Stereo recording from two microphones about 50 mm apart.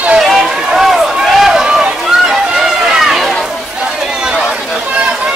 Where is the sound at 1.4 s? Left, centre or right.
Centre.